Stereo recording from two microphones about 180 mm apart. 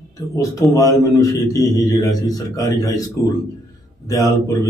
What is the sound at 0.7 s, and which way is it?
A man's voice, 20° left (ahead or behind).